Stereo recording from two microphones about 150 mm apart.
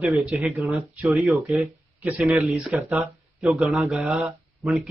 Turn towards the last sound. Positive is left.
turn(degrees=0)  # may be behind; listen again after turning